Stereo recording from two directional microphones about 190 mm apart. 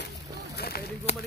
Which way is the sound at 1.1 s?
35° left (ahead or behind).